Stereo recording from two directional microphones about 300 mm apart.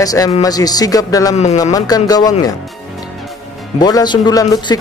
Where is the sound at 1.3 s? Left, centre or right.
Left.